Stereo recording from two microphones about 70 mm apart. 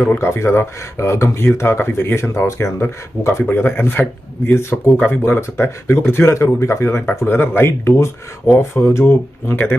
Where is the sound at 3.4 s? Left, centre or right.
Left.